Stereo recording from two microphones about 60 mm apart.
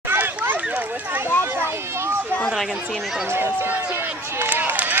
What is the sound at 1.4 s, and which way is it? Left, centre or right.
Children playing, right.